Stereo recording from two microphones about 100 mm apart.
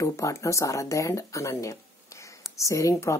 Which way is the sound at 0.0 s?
30° left (ahead or behind).